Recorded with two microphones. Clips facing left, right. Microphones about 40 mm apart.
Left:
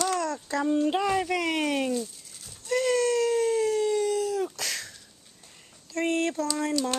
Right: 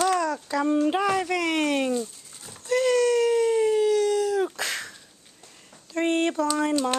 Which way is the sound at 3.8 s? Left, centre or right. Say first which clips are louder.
Right 4 dB; right.